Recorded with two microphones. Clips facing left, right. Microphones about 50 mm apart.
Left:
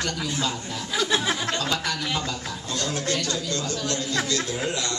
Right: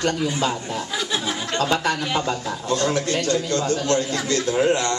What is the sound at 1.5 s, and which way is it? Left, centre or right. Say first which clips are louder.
A man's voice: right 5 dB; right.